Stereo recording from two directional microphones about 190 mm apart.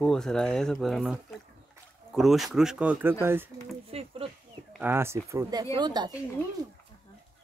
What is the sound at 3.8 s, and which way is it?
Speech, 30° right (ahead or behind).